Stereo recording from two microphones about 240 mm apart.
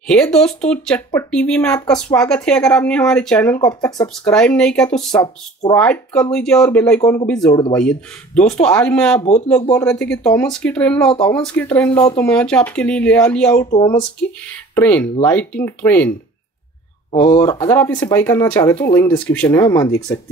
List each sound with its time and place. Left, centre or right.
0.0 s speech: centre
5.2 s speech: centre
5.8 s speech: centre
13.7 s speech: left
14.2 s speech: centre
17.3 s speech: centre